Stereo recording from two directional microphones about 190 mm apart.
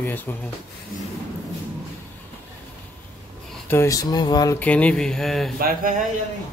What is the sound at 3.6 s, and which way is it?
Speech, 15° left (ahead or behind).